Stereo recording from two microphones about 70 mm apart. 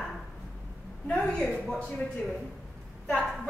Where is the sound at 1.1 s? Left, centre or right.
Centre.